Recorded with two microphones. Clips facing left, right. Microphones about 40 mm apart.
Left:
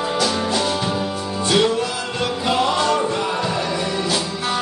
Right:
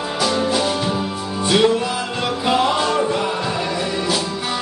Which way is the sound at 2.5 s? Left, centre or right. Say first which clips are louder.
Right 1 dB; centre.